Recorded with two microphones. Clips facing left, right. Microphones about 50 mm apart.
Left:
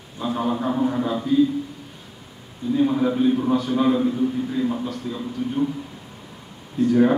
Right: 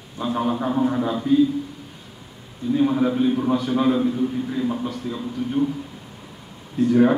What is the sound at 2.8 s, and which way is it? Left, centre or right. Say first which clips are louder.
A man's voice: even; centre.